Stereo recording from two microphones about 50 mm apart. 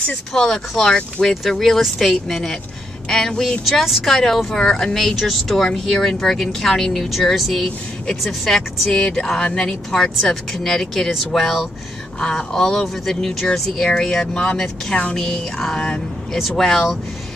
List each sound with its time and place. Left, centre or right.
0.3 s speech: centre
4.6 s speech: centre
4.9 s speech: centre
12.2 s speech: centre